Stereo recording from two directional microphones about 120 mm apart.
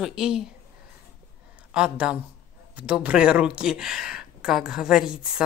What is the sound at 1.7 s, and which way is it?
Speech, 10° right (ahead or behind).